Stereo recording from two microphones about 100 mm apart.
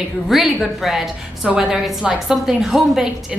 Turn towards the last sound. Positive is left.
turn(degrees=-5)  # may be behind; listen again after turning